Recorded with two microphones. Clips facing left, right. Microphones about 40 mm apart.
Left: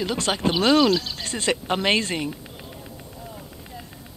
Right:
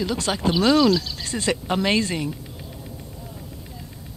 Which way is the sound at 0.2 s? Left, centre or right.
Centre.